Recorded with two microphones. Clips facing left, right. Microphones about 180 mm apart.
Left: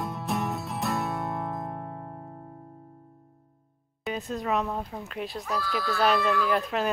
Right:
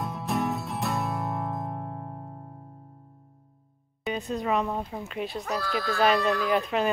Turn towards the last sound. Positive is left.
turn(degrees=0)  # may be behind; listen again after turning